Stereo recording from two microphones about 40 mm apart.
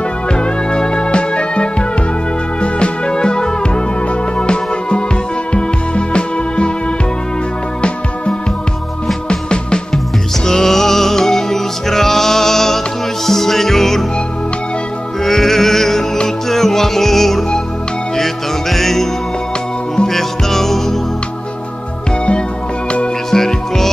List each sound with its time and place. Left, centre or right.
0.3 s music: left
9.3 s music: left
10.4 s music: centre
15.2 s music: centre
20.1 s music: centre
23.3 s music: centre